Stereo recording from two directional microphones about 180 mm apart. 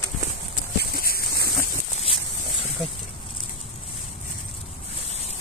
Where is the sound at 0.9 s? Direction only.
55° left (ahead or behind).